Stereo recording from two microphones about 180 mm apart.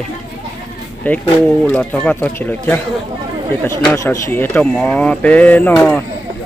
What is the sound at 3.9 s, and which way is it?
Speech, 15° left (ahead or behind).